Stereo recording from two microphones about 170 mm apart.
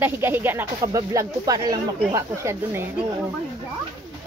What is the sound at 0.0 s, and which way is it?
Speech, 10° right (ahead or behind).